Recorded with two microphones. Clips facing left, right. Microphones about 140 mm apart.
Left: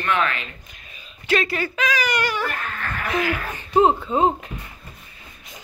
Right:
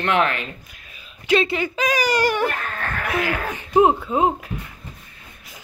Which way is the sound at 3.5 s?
10° right (ahead or behind).